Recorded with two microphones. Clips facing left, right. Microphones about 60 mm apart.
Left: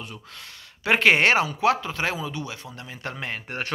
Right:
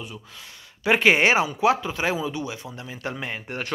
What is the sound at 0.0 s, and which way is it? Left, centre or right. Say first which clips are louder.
Speech: right 1 dB; centre.